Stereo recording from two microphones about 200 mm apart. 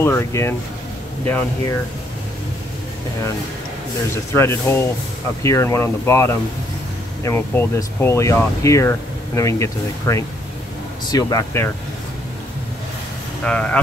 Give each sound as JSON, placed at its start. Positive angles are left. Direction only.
{"t": 0.0, "sound": "speech", "side_deg": 15}
{"t": 4.3, "sound": "speech", "side_deg": 15}
{"t": 13.4, "sound": "speech", "side_deg": 5}